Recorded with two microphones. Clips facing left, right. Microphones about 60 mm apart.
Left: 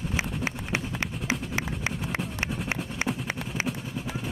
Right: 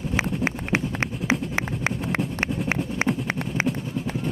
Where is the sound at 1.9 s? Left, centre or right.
Right.